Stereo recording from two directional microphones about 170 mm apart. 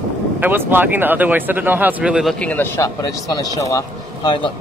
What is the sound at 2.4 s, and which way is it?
A man's voice, 10° left (ahead or behind).